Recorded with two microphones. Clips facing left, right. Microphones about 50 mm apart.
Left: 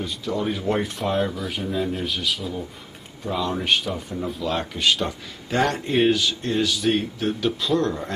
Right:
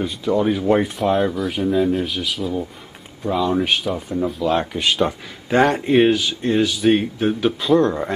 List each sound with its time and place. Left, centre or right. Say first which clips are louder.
0.0 s speech: right 7 dB; centre